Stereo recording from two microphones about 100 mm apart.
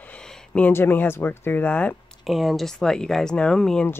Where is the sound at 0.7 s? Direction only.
25° left (ahead or behind).